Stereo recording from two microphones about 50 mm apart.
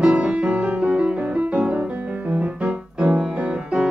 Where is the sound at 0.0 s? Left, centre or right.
Right.